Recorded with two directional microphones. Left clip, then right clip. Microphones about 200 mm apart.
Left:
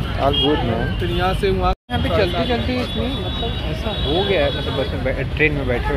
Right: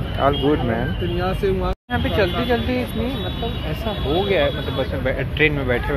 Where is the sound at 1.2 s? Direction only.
10° right (ahead or behind).